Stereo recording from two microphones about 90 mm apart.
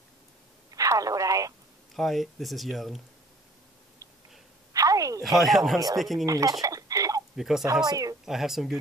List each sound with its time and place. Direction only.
0.7 s telephone: 40° right (ahead or behind)
2.0 s speech: centre (ahead or behind)
4.7 s a sound: 40° right (ahead or behind)
5.2 s speech: centre (ahead or behind)
6.2 s speech: 40° right (ahead or behind)
6.6 s a sound: 40° right (ahead or behind)
7.3 s speech: 5° right (ahead or behind)
7.8 s speech: 45° right (ahead or behind)
8.3 s speech: 5° right (ahead or behind)